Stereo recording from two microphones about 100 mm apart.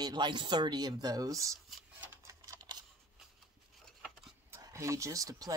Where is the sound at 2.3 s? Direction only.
35° right (ahead or behind).